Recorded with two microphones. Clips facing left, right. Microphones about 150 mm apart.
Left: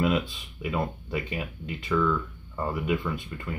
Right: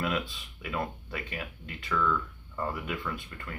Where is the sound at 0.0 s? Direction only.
20° left (ahead or behind).